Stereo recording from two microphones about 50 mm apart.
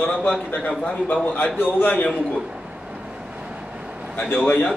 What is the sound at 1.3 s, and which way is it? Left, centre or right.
Speech, left.